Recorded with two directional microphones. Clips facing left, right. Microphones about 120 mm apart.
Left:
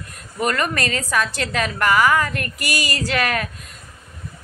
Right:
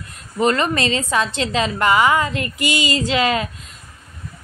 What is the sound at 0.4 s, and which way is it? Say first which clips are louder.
A woman's voice: right 4 dB; 25° right (ahead or behind).